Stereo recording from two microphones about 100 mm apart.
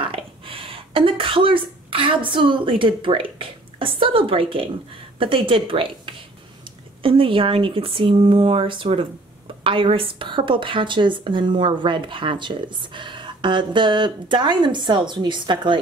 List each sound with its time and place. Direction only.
0.0 s a woman's voice: 60° right (ahead or behind)